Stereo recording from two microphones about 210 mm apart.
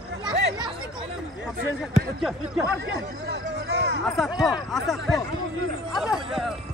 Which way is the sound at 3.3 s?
55° right (ahead or behind).